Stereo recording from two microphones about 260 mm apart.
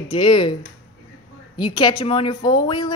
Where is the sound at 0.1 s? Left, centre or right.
Centre.